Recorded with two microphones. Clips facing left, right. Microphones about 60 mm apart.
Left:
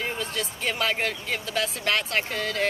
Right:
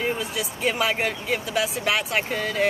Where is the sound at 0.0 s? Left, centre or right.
Centre.